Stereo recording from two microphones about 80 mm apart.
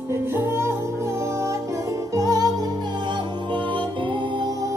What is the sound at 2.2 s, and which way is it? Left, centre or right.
Music, right.